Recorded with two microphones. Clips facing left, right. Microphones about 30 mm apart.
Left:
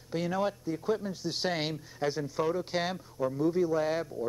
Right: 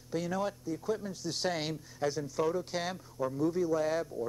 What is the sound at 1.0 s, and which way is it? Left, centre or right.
Speech, left.